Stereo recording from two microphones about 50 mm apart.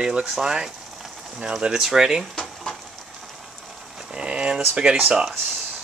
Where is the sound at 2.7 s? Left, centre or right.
Centre.